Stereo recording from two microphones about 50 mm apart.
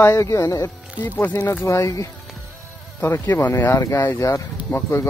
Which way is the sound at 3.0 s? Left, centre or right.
Left.